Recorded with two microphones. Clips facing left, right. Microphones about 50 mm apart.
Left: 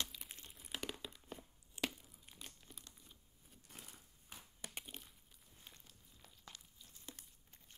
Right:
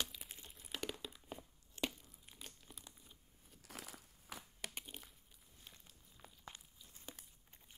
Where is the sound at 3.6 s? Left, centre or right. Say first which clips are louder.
Right 6 dB; right.